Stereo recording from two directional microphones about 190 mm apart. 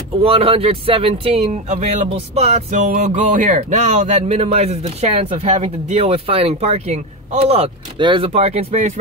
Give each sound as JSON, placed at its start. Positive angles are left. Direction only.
{"t": 0.2, "sound": "speech", "side_deg": -30}